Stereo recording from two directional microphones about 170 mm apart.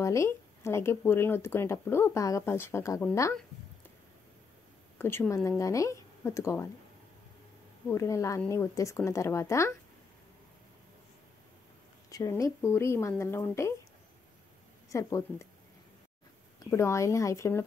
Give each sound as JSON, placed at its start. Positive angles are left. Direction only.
{"t": 0.0, "sound": "speech", "side_deg": 15}
{"t": 4.9, "sound": "speech", "side_deg": 15}
{"t": 7.9, "sound": "a woman's voice", "side_deg": 20}
{"t": 12.1, "sound": "speech", "side_deg": 20}
{"t": 14.9, "sound": "a woman's voice", "side_deg": 20}
{"t": 16.7, "sound": "speech", "side_deg": 15}